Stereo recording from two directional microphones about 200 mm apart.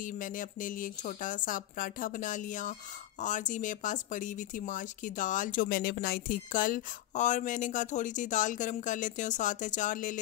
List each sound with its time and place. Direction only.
0.0 s speech: 40° left (ahead or behind)